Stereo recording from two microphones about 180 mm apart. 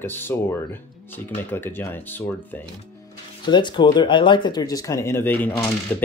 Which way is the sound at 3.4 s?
25° left (ahead or behind).